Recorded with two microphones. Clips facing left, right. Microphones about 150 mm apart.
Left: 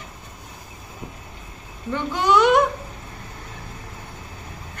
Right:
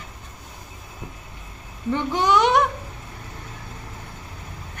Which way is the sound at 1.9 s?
20° right (ahead or behind).